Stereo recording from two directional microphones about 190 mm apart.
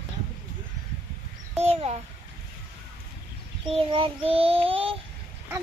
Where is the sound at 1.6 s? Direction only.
30° right (ahead or behind).